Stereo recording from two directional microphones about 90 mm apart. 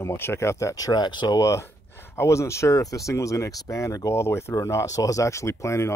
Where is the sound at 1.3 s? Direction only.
35° left (ahead or behind).